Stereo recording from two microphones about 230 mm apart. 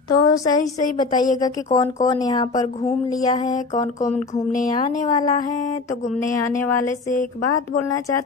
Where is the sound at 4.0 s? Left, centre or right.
Left.